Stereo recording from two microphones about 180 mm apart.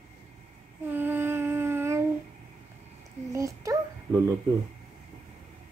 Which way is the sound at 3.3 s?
15° right (ahead or behind).